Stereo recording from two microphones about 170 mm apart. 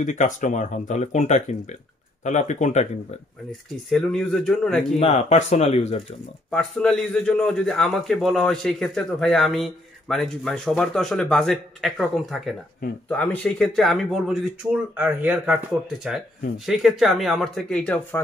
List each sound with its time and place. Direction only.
0.0 s speech: 45° left (ahead or behind)
3.9 s a man's voice: 5° left (ahead or behind)
4.9 s speech: 35° left (ahead or behind)
6.5 s a man's voice: 5° left (ahead or behind)